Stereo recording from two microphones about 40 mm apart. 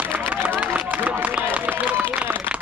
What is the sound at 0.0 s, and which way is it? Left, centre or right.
Run, right.